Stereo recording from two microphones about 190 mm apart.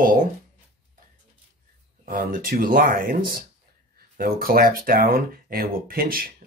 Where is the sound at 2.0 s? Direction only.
45° right (ahead or behind).